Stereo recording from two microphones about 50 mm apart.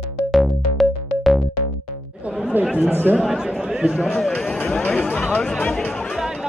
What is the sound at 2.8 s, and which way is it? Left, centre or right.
Speech, right.